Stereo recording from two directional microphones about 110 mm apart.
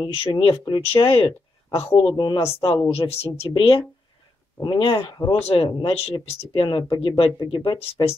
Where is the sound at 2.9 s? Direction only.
60° left (ahead or behind).